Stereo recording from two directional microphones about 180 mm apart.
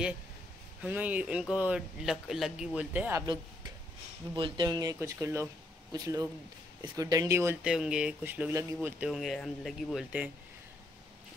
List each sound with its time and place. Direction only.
0.8 s speech: 10° right (ahead or behind)
4.4 s speech: 25° right (ahead or behind); by 10.3 s 5° right (ahead or behind)